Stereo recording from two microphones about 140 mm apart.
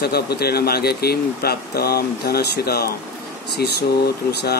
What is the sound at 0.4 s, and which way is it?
Speech, 90° left.